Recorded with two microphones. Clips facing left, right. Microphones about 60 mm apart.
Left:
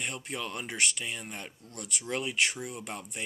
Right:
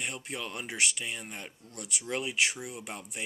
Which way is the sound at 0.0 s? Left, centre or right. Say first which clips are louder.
Left 1 dB; centre.